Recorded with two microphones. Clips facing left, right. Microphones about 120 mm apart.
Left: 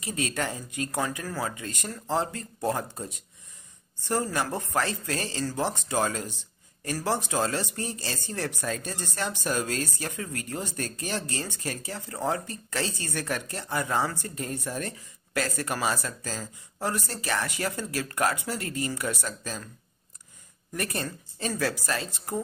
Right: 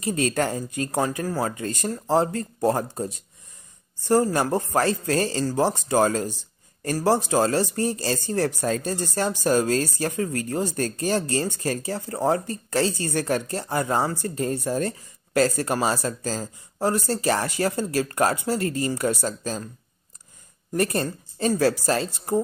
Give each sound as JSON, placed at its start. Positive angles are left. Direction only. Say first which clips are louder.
{"t": 0.0, "sound": "speech", "louder": "right 7 dB", "side_deg": -40}
{"t": 4.1, "sound": "speech", "louder": "right 8 dB", "side_deg": -40}
{"t": 20.7, "sound": "speech", "louder": "right 8 dB", "side_deg": -35}